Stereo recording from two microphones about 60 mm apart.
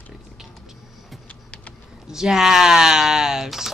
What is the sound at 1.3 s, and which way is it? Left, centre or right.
Vehicle, left.